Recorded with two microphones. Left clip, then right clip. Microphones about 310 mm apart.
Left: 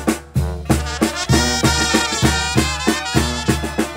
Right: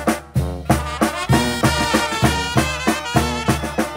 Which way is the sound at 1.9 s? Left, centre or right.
Centre.